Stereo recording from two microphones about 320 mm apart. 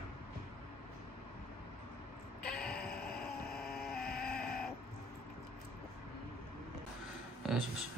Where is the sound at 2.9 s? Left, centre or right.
Left.